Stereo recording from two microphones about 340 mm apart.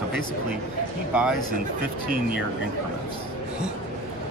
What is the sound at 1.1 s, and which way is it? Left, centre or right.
Speech, centre.